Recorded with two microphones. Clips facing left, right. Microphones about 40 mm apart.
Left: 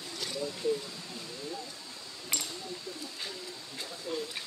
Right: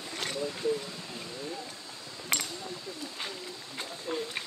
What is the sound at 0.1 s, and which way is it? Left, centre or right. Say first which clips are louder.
Vehicle: right 3 dB; right.